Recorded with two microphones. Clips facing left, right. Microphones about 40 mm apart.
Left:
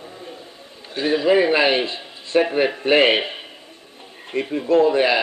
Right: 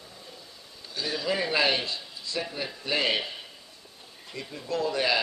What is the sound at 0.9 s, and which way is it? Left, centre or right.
A man's voice, left.